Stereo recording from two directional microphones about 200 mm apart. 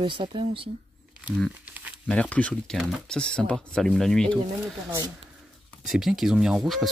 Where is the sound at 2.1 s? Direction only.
5° left (ahead or behind).